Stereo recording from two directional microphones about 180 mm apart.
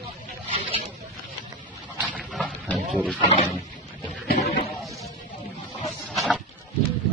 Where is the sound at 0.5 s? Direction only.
30° right (ahead or behind).